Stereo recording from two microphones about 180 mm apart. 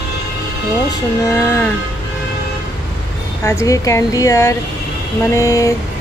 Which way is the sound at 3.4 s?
15° left (ahead or behind).